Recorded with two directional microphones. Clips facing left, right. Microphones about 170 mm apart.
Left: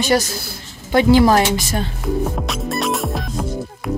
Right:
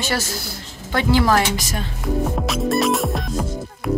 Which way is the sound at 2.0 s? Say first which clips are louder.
Right 3 dB; centre (ahead or behind).